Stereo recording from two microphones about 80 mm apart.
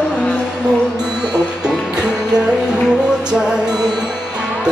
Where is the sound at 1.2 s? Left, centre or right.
Right.